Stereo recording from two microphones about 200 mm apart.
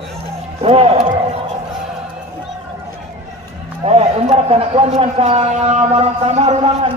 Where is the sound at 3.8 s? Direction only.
30° right (ahead or behind).